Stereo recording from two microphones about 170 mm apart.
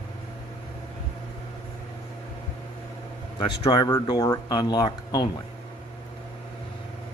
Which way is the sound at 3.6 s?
25° left (ahead or behind).